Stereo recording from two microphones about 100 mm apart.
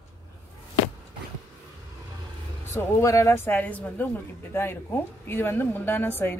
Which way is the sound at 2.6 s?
30° left (ahead or behind).